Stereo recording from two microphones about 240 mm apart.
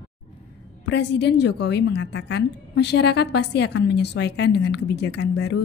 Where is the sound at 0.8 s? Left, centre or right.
Left.